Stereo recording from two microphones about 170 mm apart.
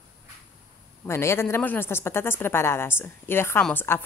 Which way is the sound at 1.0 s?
15° left (ahead or behind).